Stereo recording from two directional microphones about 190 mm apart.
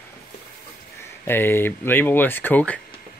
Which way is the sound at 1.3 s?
10° left (ahead or behind).